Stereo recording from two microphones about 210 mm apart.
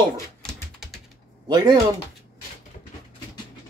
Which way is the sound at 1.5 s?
20° right (ahead or behind).